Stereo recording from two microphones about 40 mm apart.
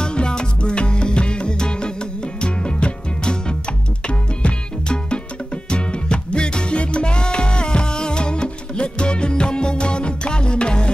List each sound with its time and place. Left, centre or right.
0.0 s music: left